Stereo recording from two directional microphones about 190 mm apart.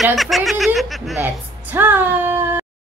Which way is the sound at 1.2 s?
10° right (ahead or behind).